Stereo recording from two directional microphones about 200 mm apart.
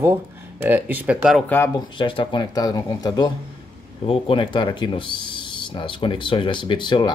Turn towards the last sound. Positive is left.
turn(degrees=20)  # may be behind; listen again after turning